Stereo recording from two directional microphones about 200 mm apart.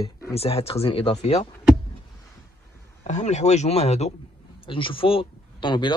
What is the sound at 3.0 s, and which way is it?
A man's voice, 35° left (ahead or behind).